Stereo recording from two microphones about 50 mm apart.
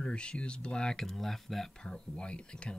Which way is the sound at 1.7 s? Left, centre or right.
Centre.